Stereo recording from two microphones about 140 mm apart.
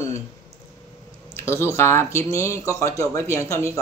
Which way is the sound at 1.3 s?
20° left (ahead or behind).